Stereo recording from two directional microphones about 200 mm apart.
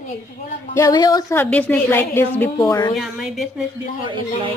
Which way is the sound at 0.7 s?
20° left (ahead or behind).